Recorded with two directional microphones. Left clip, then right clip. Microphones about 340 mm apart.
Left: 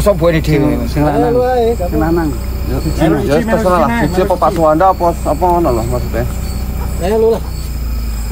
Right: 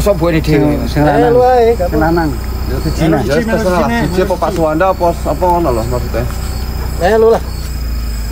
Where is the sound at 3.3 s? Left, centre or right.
Centre.